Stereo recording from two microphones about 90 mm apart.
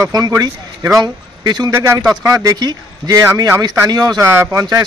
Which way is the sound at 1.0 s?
55° right (ahead or behind).